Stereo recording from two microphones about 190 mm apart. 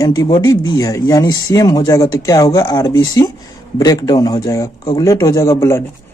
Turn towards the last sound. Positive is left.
turn(degrees=15)  # may be behind; listen again after turning